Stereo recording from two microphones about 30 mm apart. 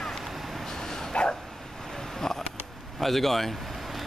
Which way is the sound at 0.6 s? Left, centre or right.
Centre.